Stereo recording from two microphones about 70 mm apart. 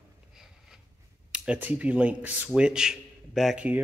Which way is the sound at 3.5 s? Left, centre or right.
Right.